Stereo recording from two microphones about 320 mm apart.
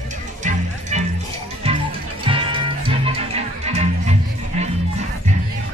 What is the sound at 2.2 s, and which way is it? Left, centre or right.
Music, centre.